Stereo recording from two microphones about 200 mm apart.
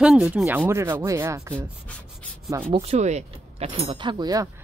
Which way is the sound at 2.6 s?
30° right (ahead or behind).